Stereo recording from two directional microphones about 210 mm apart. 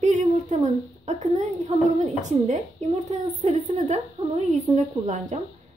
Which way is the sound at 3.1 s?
35° right (ahead or behind).